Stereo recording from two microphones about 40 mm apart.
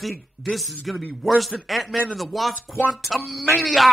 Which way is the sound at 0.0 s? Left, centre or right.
Centre.